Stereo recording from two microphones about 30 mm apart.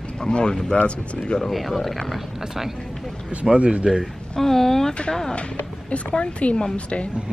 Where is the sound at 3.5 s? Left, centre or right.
Right.